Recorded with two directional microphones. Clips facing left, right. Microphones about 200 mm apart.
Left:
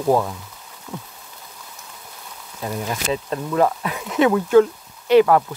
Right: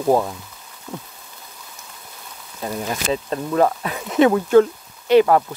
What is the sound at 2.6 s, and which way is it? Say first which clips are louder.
Speech: right 1 dB; 30° right (ahead or behind).